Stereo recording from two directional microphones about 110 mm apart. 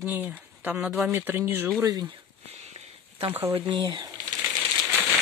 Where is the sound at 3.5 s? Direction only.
45° right (ahead or behind).